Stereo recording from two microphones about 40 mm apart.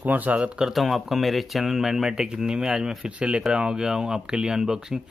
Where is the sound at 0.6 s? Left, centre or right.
Centre.